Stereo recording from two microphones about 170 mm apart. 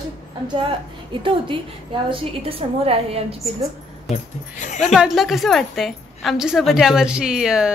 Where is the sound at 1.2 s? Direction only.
30° right (ahead or behind).